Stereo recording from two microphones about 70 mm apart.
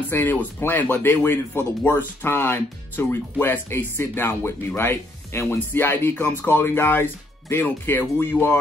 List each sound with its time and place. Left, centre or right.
0.1 s speech: left